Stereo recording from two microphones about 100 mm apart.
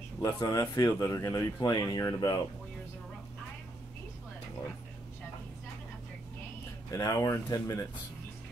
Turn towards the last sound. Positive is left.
turn(degrees=35)  # may be behind; listen again after turning